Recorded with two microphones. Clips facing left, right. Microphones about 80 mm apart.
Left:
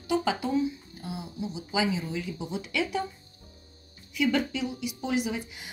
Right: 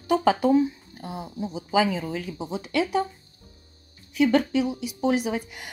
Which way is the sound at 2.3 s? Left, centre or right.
Right.